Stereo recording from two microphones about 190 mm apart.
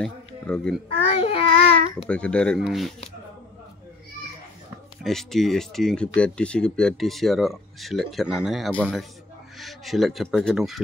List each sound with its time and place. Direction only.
0.0 s speech: 5° left (ahead or behind)
0.9 s child singing: 30° left (ahead or behind)
2.0 s speech: 5° left (ahead or behind)
5.0 s speech: centre (ahead or behind)